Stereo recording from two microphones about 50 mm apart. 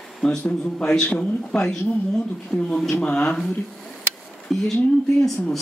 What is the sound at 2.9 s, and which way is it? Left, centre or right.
Speech, left.